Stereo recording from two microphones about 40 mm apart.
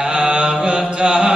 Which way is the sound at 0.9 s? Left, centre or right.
Right.